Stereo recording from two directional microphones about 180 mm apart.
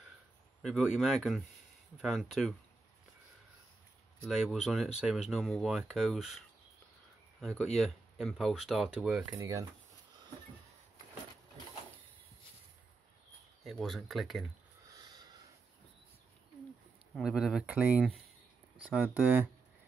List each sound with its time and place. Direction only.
0.6 s speech: 5° right (ahead or behind)
4.3 s speech: 5° right (ahead or behind)
7.3 s speech: centre (ahead or behind)
13.7 s speech: centre (ahead or behind)
15.0 s a sound: 25° right (ahead or behind)
17.1 s speech: 5° right (ahead or behind)